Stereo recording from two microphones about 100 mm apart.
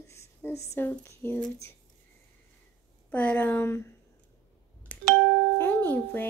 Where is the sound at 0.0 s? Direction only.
30° left (ahead or behind).